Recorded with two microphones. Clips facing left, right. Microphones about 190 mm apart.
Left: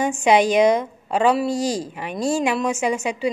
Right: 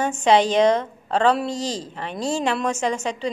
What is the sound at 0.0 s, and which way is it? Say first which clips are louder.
Speech: left 1 dB; 10° left (ahead or behind).